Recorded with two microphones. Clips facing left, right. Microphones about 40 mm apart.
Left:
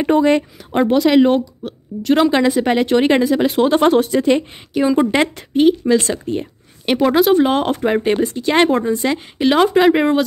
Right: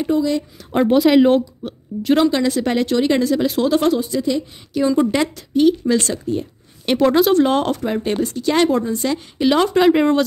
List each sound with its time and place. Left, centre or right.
0.0 s a woman's voice: left
0.8 s speech: centre
2.3 s speech: left
4.0 s a woman's voice: left
4.9 s a woman's voice: left
5.7 s speech: left
6.0 s a woman's voice: left
6.9 s speech: centre
7.7 s a woman's voice: left; by 10.2 s centre